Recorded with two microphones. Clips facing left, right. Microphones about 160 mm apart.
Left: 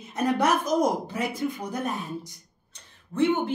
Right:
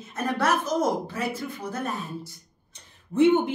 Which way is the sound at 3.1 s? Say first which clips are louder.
Right 4 dB; 15° right (ahead or behind).